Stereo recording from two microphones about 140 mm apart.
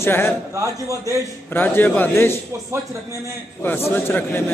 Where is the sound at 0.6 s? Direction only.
20° right (ahead or behind).